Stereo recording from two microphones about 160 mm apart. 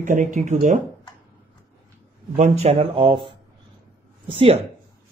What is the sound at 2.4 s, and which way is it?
Speech, 40° right (ahead or behind).